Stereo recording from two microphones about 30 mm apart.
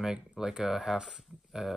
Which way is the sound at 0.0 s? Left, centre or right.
Centre.